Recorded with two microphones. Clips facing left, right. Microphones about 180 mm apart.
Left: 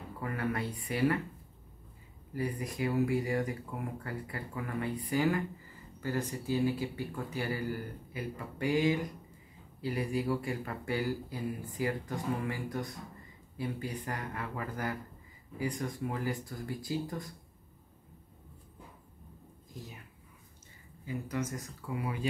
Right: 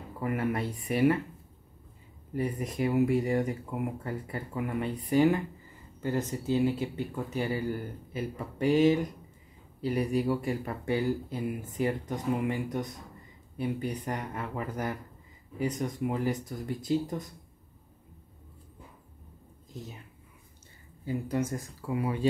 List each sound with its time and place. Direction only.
0.2 s speech: 20° right (ahead or behind)
2.3 s speech: 25° right (ahead or behind)
21.0 s speech: 30° right (ahead or behind)